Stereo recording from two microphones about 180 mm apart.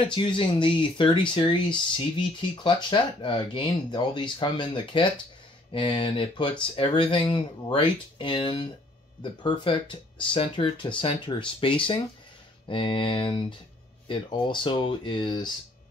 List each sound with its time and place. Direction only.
0.0 s speech: 25° left (ahead or behind)
2.2 s speech: 25° left (ahead or behind)